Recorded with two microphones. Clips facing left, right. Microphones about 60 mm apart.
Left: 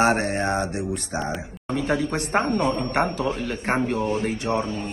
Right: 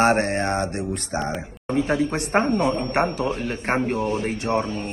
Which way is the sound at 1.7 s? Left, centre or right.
Right.